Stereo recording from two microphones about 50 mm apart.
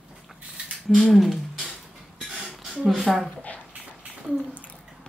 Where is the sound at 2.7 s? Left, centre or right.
Centre.